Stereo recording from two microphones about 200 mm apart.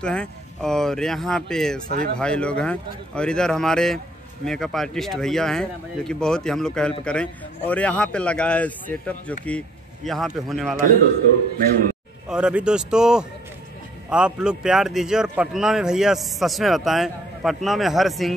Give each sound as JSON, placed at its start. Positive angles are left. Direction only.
{"t": 0.0, "sound": "speech", "side_deg": 5}
{"t": 1.9, "sound": "speech", "side_deg": -50}
{"t": 2.1, "sound": "speech", "side_deg": 5}
{"t": 12.3, "sound": "speech", "side_deg": -5}